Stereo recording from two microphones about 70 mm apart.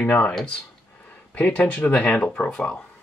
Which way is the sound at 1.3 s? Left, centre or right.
Left.